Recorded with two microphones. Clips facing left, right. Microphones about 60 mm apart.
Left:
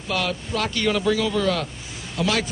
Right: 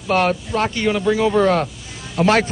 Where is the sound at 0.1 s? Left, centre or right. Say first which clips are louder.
Right 8 dB; right.